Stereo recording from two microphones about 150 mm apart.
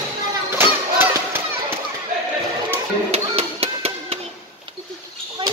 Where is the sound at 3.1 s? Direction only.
40° right (ahead or behind).